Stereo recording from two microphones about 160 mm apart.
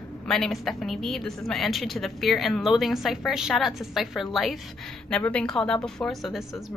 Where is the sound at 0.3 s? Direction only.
Centre (ahead or behind).